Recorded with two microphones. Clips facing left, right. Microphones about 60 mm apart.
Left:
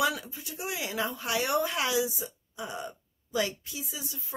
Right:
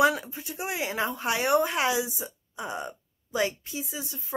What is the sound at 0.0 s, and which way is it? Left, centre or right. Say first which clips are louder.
Speech: right 6 dB; right.